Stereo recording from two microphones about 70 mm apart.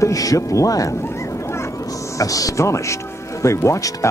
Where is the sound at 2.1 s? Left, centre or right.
Left.